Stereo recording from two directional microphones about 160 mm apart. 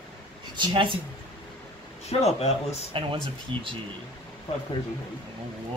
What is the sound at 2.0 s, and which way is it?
Speech, 40° left (ahead or behind).